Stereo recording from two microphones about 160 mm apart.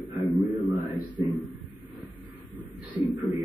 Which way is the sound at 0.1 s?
Centre (ahead or behind).